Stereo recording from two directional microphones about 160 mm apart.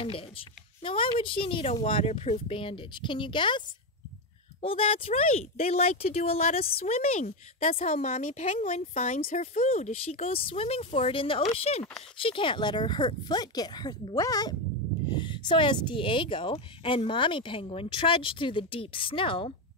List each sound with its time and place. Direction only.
0.0 s a woman's voice: 35° left (ahead or behind)